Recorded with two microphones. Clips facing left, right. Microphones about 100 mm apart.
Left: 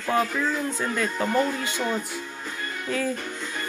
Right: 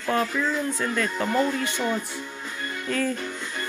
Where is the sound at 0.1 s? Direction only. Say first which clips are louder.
Left 1 dB; 15° left (ahead or behind).